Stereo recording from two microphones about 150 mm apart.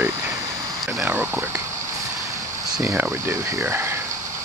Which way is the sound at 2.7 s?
15° right (ahead or behind).